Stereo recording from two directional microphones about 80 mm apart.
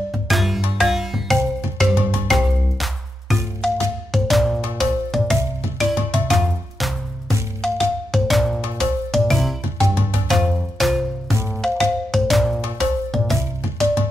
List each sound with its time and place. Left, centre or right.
0.3 s music: centre